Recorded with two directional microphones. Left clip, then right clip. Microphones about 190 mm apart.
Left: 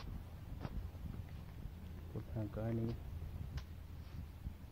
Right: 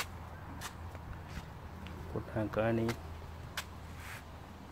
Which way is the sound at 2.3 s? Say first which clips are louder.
Right 13 dB; 20° right (ahead or behind).